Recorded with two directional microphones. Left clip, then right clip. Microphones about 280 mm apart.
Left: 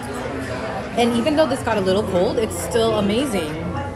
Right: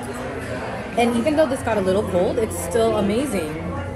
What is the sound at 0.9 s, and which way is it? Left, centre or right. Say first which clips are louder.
A woman's voice: even; centre.